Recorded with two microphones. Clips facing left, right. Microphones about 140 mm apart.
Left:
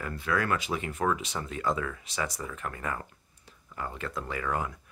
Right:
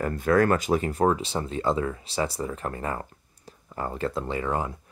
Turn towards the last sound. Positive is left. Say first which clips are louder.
# right 4 dB
turn(degrees=-30)  # may be behind; listen again after turning